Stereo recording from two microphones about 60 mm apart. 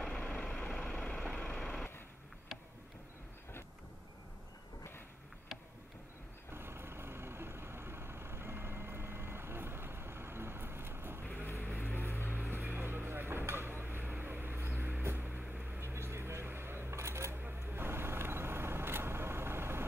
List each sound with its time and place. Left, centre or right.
0.2 s vehicle: centre
6.5 s vehicle: right
11.4 s vehicle: left
12.1 s music: left
12.4 s vehicle: right
13.5 s a sound: right
14.8 s vehicle: right
15.0 s music: right
15.8 s shuffling cards: right
17.4 s vehicle: right